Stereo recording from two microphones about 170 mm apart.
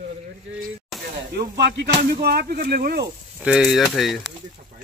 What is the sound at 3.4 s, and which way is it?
Speech, 5° right (ahead or behind).